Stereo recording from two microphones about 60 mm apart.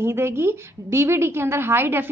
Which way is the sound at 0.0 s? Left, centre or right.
Right.